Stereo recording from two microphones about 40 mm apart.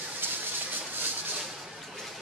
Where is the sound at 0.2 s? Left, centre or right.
Right.